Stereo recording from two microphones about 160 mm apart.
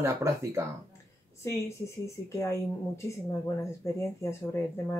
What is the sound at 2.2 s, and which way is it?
Speech, 20° left (ahead or behind).